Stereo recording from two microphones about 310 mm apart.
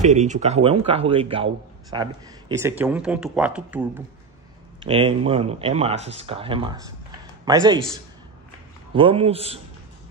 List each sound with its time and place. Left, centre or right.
0.0 s speech: right; by 4.0 s centre
4.8 s speech: centre
8.9 s speech: centre